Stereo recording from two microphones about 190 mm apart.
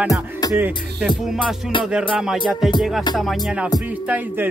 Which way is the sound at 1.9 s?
5° right (ahead or behind).